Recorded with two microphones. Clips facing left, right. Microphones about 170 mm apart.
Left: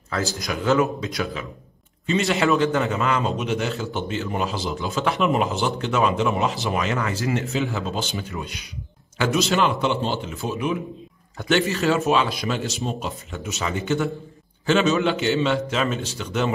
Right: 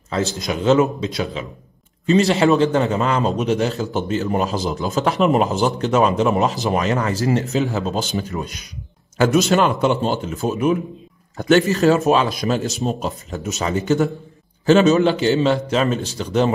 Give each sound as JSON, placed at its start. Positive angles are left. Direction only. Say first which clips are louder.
{"t": 0.1, "sound": "speech", "louder": "right 4 dB", "side_deg": -25}
{"t": 2.0, "sound": "a man's voice", "louder": "right 6 dB", "side_deg": -35}